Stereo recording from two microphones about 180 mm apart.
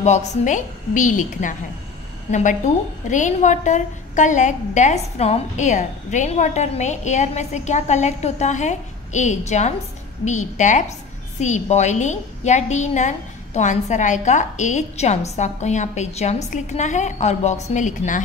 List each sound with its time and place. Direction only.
0.0 s a woman's voice: 40° left (ahead or behind)